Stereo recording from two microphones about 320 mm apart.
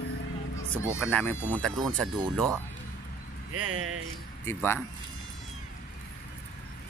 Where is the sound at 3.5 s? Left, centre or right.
Right.